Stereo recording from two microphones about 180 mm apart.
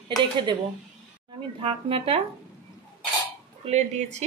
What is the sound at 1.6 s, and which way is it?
Speech, 30° right (ahead or behind).